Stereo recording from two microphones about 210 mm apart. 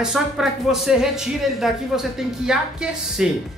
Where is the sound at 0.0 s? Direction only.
Centre (ahead or behind).